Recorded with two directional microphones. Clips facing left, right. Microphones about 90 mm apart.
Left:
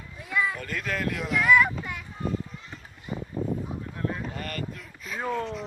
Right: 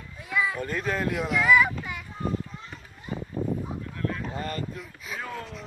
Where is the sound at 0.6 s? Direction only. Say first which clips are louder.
Right 3 dB; 30° right (ahead or behind).